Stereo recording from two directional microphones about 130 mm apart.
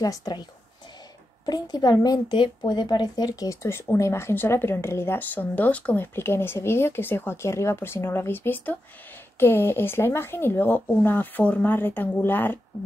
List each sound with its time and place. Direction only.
0.0 s speech: 30° left (ahead or behind)